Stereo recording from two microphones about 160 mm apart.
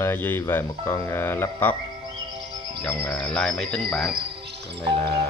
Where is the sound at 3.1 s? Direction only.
5° left (ahead or behind).